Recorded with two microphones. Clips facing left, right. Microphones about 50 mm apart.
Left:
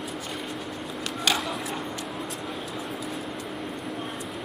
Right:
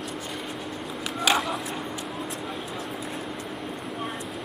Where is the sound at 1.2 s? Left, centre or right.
Centre.